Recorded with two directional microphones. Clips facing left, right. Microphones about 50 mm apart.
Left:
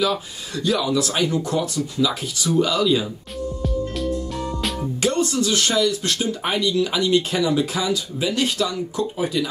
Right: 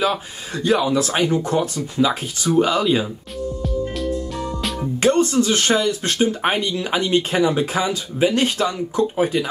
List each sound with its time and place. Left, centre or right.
0.0 s speech: right
5.0 s speech: right